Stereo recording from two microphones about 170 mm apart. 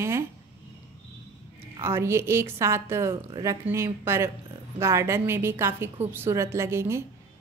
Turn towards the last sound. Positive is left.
turn(degrees=-15)  # may be behind; listen again after turning